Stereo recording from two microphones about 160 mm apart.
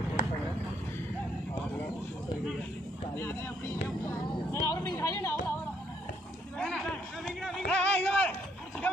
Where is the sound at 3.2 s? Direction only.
15° left (ahead or behind).